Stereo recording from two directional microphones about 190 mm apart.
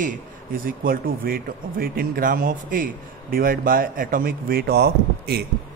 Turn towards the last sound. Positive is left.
turn(degrees=-60)  # may be behind; listen again after turning